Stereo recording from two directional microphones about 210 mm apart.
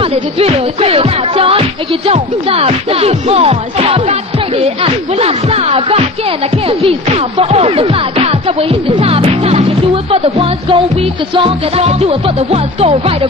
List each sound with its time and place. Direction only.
0.0 s music: 30° right (ahead or behind)